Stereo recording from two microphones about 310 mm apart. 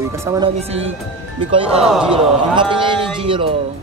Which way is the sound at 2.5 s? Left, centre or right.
Centre.